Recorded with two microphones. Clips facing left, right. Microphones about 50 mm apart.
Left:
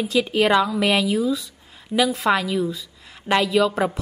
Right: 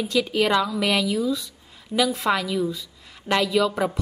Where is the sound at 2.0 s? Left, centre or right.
Centre.